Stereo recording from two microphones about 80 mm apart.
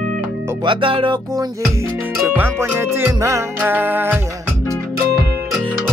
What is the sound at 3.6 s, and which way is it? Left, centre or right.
Music, right.